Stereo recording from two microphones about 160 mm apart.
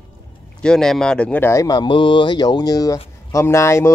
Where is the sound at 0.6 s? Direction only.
5° left (ahead or behind).